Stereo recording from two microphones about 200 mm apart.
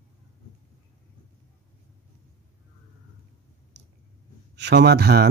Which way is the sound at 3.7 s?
60° right (ahead or behind).